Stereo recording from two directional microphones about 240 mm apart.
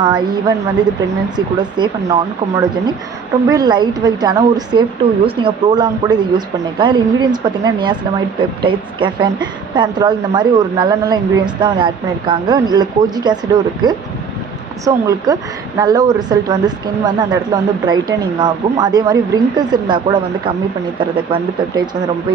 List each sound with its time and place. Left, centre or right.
1.3 s a woman's voice: centre
14.9 s a woman's voice: centre